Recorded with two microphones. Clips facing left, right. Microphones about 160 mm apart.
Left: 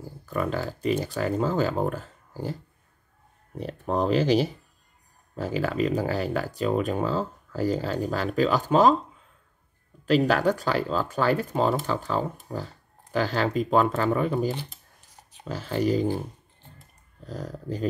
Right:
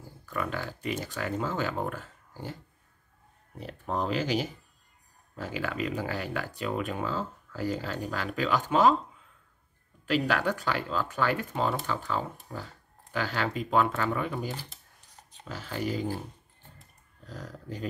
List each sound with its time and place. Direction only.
0.3 s speech: 35° left (ahead or behind)
3.5 s speech: 40° left (ahead or behind)
10.0 s speech: 35° left (ahead or behind)
17.3 s speech: 35° left (ahead or behind)